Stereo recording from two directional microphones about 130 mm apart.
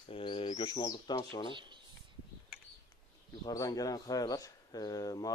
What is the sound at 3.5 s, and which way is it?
Speech, 30° left (ahead or behind).